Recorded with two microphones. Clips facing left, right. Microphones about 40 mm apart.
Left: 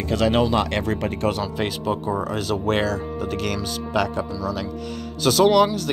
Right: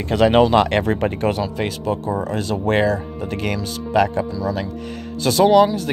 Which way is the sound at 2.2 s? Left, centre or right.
Centre.